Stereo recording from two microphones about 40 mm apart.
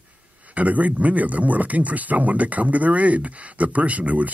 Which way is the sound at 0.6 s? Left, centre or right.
Right.